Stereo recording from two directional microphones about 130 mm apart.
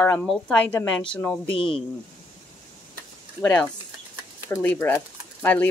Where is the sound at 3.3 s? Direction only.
10° left (ahead or behind).